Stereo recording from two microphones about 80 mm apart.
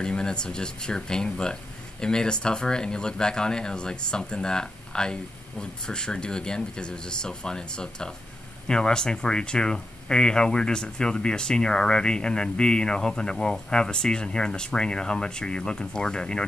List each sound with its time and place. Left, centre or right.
0.0 s speech: centre